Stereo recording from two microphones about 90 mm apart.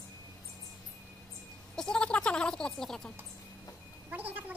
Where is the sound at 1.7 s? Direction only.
5° left (ahead or behind).